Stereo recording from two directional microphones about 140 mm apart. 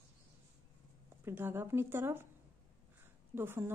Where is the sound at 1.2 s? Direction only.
15° right (ahead or behind).